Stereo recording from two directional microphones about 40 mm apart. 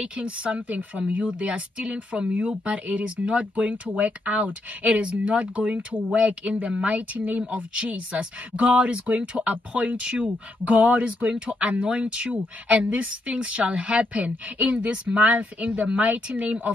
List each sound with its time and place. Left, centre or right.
0.0 s speech: right
1.2 s a woman's voice: right
7.2 s speech: right
7.5 s a woman's voice: right
10.6 s a woman's voice: right